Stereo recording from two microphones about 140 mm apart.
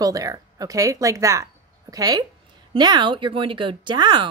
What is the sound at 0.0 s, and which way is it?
Speech, 25° right (ahead or behind).